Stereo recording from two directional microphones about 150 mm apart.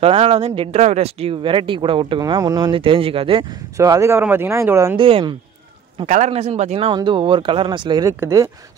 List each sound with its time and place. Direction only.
0.0 s speech: 40° right (ahead or behind)
3.7 s speech: 20° right (ahead or behind)
4.9 s speech: 35° right (ahead or behind)
6.0 s speech: 50° right (ahead or behind)
6.9 s speech: 30° right (ahead or behind)